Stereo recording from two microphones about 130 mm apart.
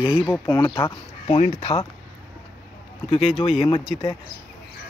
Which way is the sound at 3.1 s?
45° left (ahead or behind).